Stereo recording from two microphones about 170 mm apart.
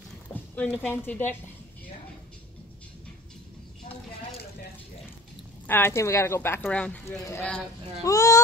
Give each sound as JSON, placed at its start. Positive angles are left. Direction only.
{"t": 0.3, "sound": "a woman's voice", "side_deg": 10}
{"t": 5.7, "sound": "speech", "side_deg": 15}